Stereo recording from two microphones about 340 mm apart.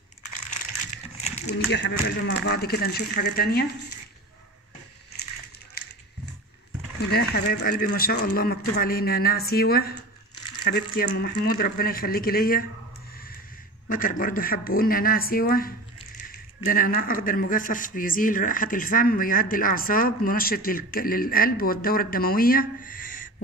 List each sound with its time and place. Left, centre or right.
1.5 s a man's voice: left
7.0 s a man's voice: left
13.8 s a man's voice: left